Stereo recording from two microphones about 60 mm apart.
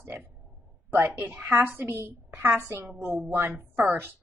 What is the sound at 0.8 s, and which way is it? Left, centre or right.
A woman's voice, right.